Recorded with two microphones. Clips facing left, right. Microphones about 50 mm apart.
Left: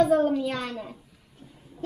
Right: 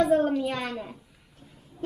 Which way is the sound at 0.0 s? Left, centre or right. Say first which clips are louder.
Left 1 dB; right.